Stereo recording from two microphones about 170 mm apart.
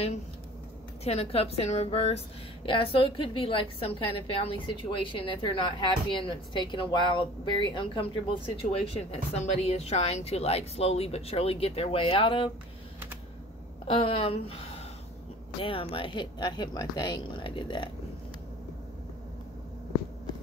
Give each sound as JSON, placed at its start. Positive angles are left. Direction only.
{"t": 1.0, "sound": "a woman's voice", "side_deg": 35}
{"t": 13.8, "sound": "a woman's voice", "side_deg": 30}
{"t": 15.6, "sound": "speech", "side_deg": 30}